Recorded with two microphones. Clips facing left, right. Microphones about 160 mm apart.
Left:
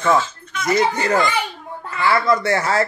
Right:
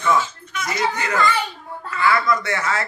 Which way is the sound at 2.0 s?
30° left (ahead or behind).